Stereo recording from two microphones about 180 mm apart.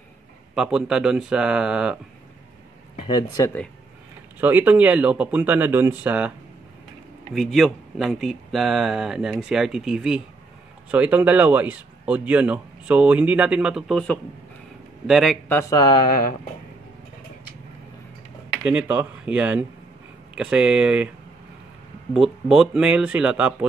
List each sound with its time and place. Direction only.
0.6 s speech: 5° right (ahead or behind)
3.1 s speech: 20° left (ahead or behind)
4.4 s speech: 10° right (ahead or behind)
7.3 s speech: centre (ahead or behind)
15.4 s speech: 10° left (ahead or behind)
18.9 s speech: 10° right (ahead or behind)
22.1 s speech: centre (ahead or behind)